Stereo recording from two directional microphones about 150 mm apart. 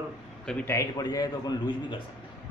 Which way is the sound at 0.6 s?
25° left (ahead or behind).